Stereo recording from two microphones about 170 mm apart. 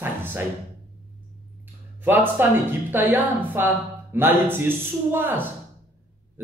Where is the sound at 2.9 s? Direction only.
10° right (ahead or behind).